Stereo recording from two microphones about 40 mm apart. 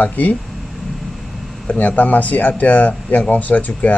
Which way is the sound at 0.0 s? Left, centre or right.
Left.